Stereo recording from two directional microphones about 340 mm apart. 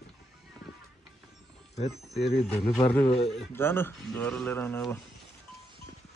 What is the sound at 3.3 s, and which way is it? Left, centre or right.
Speech, centre.